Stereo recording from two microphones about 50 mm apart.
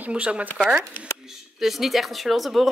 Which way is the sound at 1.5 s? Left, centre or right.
Centre.